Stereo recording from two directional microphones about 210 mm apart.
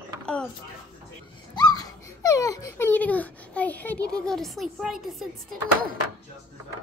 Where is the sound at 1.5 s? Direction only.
20° left (ahead or behind).